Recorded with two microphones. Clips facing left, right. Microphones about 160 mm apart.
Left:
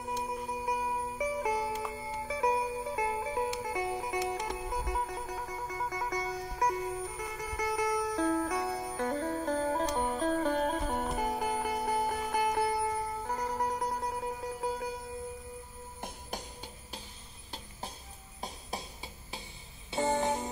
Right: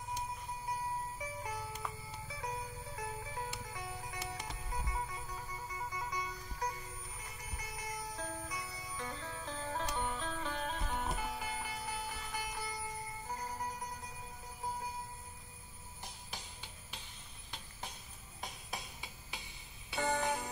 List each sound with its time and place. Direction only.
0.2 s music: 80° left
16.0 s music: 50° left (ahead or behind)
18.4 s music: 30° left (ahead or behind)
19.9 s music: 25° left (ahead or behind)